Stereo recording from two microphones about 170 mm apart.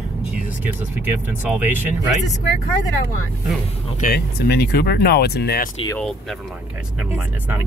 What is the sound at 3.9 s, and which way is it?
Speech, 60° left (ahead or behind).